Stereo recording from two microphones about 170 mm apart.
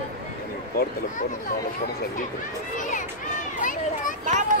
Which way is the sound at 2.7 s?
50° left (ahead or behind).